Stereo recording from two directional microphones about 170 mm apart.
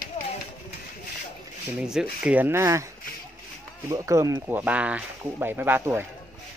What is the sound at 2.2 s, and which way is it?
Speech, 10° right (ahead or behind).